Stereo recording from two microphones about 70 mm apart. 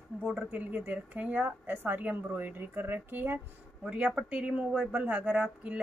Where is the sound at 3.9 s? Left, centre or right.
Centre.